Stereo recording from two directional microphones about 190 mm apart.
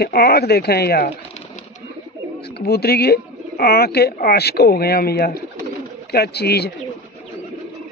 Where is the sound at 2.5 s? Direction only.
55° left (ahead or behind).